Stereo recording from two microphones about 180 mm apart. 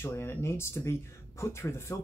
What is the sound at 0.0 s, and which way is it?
Speech, 10° left (ahead or behind).